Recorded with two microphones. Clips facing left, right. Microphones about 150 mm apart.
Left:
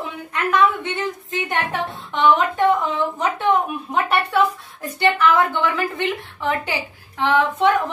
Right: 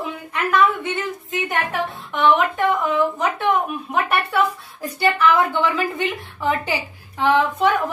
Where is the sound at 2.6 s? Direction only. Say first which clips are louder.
Left 3 dB; 20° left (ahead or behind).